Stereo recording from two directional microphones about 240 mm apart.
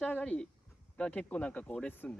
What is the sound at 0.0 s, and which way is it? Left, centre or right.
Speech, centre.